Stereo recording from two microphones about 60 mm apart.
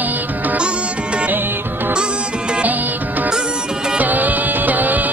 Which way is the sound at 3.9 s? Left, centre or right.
Right.